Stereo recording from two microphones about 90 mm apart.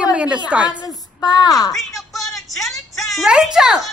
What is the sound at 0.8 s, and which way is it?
Speech, 50° left (ahead or behind).